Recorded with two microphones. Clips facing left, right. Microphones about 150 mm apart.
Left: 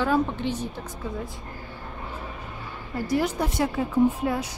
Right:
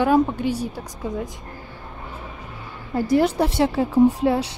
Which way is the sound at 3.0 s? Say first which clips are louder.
Right 6 dB; 30° right (ahead or behind).